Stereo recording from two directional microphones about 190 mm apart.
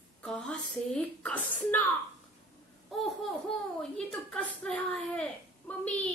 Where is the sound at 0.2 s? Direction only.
5° left (ahead or behind).